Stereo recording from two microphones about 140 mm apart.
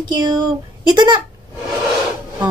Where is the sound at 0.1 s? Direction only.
30° right (ahead or behind).